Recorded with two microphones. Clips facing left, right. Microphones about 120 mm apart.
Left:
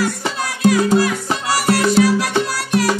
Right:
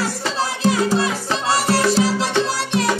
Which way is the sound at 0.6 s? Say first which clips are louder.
Left 5 dB; 25° right (ahead or behind).